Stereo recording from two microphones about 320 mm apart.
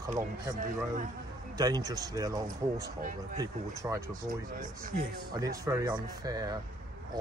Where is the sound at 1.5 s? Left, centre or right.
Centre.